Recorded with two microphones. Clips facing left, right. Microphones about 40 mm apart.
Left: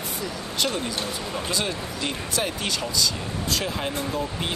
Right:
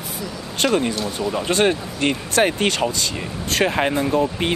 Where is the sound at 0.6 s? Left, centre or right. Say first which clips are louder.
Right 8 dB; right.